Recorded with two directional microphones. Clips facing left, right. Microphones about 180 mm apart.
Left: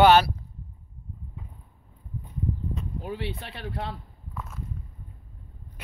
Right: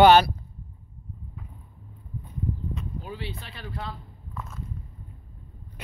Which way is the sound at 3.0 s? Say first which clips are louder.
Left 4 dB; 60° left (ahead or behind).